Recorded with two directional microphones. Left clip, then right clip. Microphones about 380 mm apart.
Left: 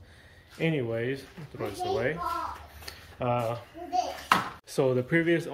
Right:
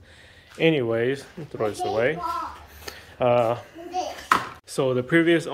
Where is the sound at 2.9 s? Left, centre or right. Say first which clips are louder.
Right 9 dB; centre.